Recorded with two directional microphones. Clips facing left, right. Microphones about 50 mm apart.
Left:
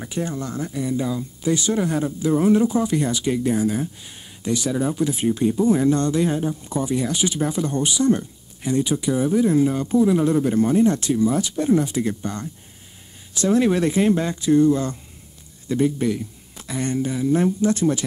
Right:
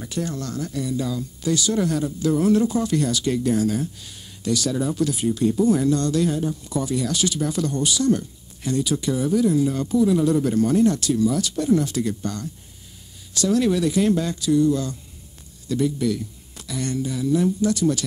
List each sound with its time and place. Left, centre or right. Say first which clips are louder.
0.0 s speech: left 1 dB; left